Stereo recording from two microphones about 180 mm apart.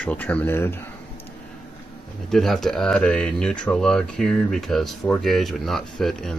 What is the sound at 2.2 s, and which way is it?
Speech, centre (ahead or behind).